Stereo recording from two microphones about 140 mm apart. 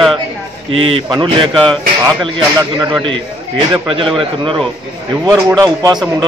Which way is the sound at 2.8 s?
30° right (ahead or behind).